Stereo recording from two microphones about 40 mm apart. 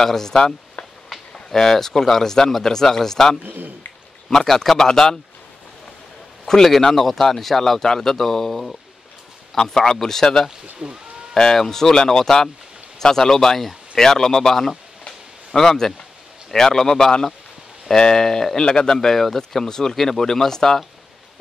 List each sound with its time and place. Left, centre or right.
0.0 s speech: centre
0.8 s a sound: left
1.3 s speech: centre
3.4 s a man's voice: right
4.3 s speech: centre
6.4 s a man's voice: centre
10.8 s speech: right
11.3 s speech: centre
15.0 s a sound: centre
16.5 s speech: centre
18.2 s speech: centre
18.7 s speech: left
18.9 s speech: centre